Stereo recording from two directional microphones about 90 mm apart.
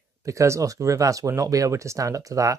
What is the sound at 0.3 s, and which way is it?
Speech, 35° right (ahead or behind).